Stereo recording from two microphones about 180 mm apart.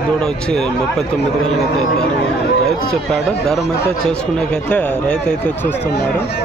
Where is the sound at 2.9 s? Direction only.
5° left (ahead or behind).